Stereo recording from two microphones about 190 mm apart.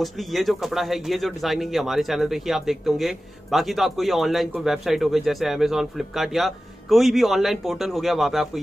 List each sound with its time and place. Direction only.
0.0 s speech: centre (ahead or behind)